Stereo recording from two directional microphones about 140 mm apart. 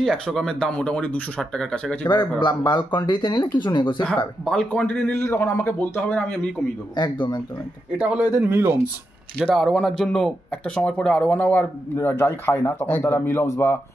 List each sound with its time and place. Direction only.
0.0 s speech: centre (ahead or behind)
2.4 s speech: 30° left (ahead or behind)
4.5 s speech: 5° left (ahead or behind)
7.0 s speech: 35° left (ahead or behind)
8.0 s speech: 10° right (ahead or behind)
9.4 s speech: 5° right (ahead or behind); by 13.7 s 15° left (ahead or behind)